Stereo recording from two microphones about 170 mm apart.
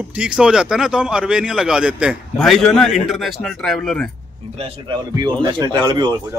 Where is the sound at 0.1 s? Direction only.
5° right (ahead or behind).